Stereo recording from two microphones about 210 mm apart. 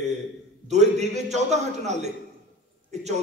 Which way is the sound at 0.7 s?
35° right (ahead or behind).